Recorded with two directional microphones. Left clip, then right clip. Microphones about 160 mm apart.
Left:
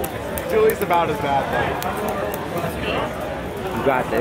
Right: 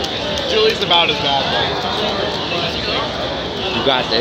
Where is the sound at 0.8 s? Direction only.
30° left (ahead or behind).